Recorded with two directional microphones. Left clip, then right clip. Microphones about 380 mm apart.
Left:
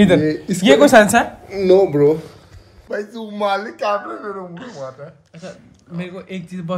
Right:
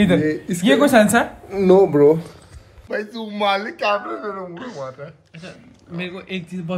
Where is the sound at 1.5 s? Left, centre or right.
Centre.